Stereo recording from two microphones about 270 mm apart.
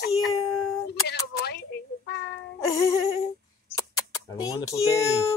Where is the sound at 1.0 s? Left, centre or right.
Left.